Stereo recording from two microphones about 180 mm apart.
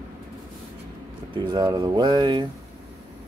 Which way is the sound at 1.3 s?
25° right (ahead or behind).